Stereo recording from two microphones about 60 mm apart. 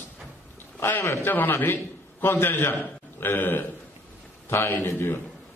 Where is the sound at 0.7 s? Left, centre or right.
Left.